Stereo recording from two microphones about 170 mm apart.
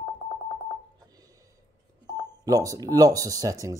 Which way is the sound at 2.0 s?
25° right (ahead or behind).